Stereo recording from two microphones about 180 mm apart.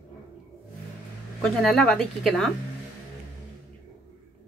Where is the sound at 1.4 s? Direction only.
Centre (ahead or behind).